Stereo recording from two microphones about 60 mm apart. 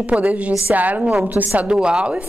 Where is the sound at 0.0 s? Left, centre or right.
Right.